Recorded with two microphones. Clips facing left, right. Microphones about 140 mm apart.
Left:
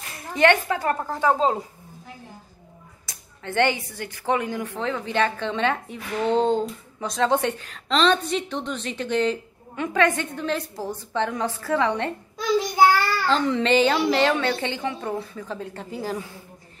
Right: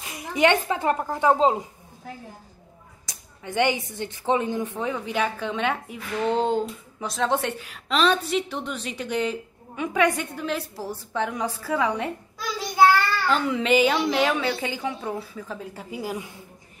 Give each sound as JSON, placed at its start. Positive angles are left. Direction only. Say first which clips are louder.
{"t": 0.1, "sound": "speech", "louder": "left 1 dB", "side_deg": -15}
{"t": 3.1, "sound": "speech", "louder": "left 2 dB", "side_deg": -15}
{"t": 12.4, "sound": "child singing", "louder": "left 6 dB", "side_deg": 20}
{"t": 13.3, "sound": "speech", "louder": "left 1 dB", "side_deg": -5}